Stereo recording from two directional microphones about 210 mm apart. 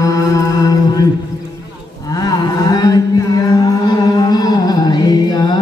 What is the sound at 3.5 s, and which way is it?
Music, 15° left (ahead or behind).